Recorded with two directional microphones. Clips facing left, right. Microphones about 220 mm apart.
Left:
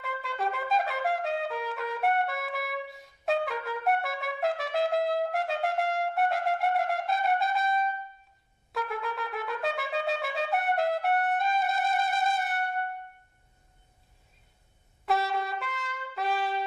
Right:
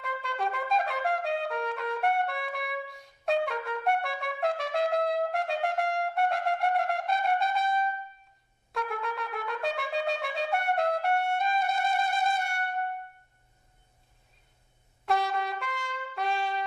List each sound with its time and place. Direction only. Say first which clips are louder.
0.0 s trumpet: even; centre (ahead or behind)
15.0 s trumpet: even; centre (ahead or behind)